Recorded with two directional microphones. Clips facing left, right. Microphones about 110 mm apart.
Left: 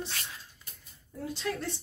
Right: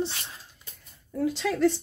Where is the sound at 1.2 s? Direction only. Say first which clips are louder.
Right 11 dB; 90° right.